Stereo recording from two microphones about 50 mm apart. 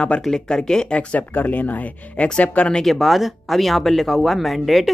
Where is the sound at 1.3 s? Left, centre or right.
Left.